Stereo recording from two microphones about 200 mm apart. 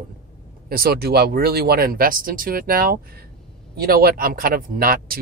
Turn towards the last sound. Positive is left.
turn(degrees=-45)  # may be behind; listen again after turning